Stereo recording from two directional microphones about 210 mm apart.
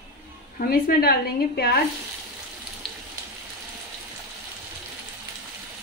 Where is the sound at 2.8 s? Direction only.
Centre (ahead or behind).